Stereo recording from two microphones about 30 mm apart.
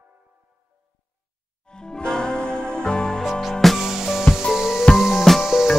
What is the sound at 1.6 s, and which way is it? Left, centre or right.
Music, left.